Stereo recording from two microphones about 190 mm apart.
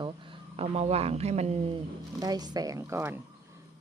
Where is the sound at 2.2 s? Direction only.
20° right (ahead or behind).